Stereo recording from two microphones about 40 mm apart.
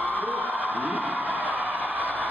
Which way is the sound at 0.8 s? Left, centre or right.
Right.